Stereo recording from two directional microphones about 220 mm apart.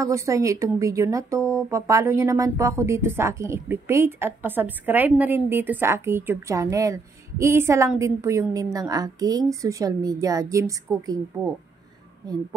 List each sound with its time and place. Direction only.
0.0 s speech: 15° right (ahead or behind)